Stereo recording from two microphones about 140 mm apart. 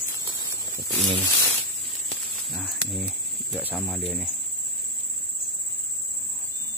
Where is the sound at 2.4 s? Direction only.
Centre (ahead or behind).